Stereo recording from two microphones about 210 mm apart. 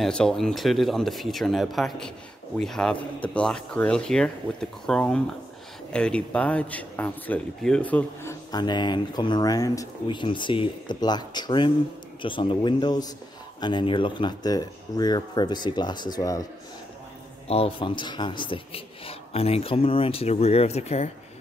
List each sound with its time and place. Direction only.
0.0 s speech: 5° left (ahead or behind)
17.5 s speech: 25° left (ahead or behind)